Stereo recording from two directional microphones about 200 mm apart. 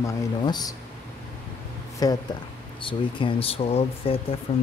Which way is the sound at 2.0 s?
20° left (ahead or behind).